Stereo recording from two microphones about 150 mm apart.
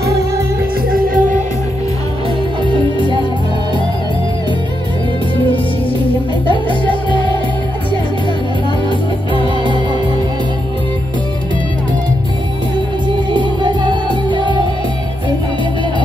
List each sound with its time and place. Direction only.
0.9 s music: 65° right (ahead or behind)
2.6 s music: 30° right (ahead or behind)
9.3 s music: 30° right (ahead or behind)
13.3 s music: 30° right (ahead or behind)